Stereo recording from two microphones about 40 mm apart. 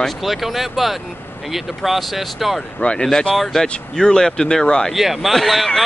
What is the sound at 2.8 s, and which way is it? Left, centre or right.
Speech, left.